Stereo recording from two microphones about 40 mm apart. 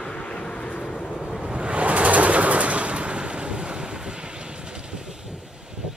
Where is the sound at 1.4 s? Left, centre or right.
Right.